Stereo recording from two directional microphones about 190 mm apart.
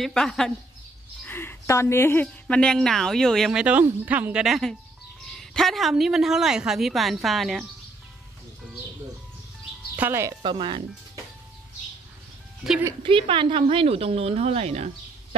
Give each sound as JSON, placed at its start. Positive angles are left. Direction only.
{"t": 0.0, "sound": "a woman's voice", "side_deg": 5}
{"t": 9.9, "sound": "speech", "side_deg": -10}
{"t": 10.4, "sound": "speech", "side_deg": -25}
{"t": 12.6, "sound": "a woman's voice", "side_deg": -5}
{"t": 13.0, "sound": "a woman's voice", "side_deg": -25}